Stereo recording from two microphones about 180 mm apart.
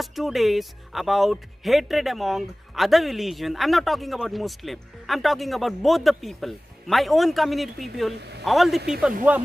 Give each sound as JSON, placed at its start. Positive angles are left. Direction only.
{"t": 0.0, "sound": "speech", "side_deg": 0}
{"t": 8.2, "sound": "speech", "side_deg": -70}
{"t": 8.5, "sound": "speech", "side_deg": 0}